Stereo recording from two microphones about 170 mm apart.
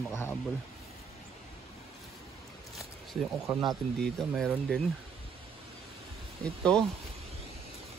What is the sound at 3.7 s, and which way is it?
Speech, 5° left (ahead or behind).